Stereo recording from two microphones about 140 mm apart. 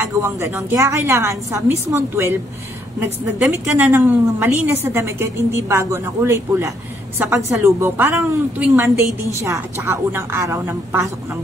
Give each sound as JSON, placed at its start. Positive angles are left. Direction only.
{"t": 0.0, "sound": "a woman's voice", "side_deg": -20}